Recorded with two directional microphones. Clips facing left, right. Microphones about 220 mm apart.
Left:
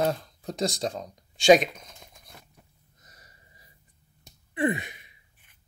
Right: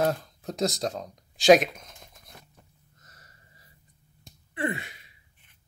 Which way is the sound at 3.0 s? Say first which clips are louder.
Left 1 dB; 15° left (ahead or behind).